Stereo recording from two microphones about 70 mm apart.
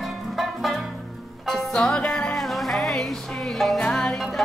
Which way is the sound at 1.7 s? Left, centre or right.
Centre.